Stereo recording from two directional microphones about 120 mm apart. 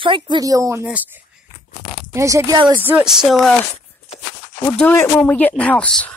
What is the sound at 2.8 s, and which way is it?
Speech, 15° right (ahead or behind).